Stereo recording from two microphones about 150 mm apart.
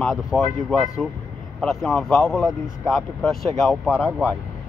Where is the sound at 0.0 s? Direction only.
Centre (ahead or behind).